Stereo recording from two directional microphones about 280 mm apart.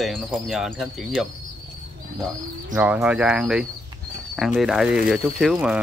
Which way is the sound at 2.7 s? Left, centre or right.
Centre.